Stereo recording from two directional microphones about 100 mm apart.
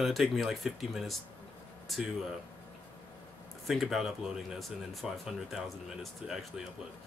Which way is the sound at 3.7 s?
5° right (ahead or behind).